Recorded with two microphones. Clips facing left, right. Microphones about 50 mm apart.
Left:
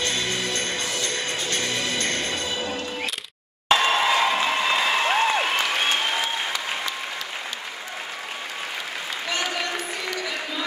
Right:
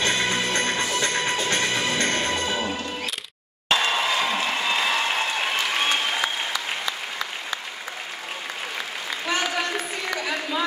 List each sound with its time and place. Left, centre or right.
0.0 s music: right
3.6 s applause: centre